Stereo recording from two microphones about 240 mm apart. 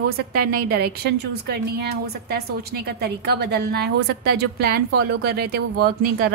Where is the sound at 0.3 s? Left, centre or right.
Right.